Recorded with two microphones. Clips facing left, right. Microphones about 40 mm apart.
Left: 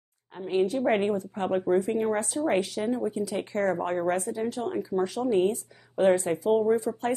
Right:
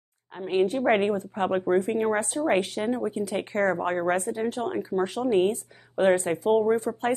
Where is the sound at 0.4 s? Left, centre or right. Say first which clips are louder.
Right 1 dB; right.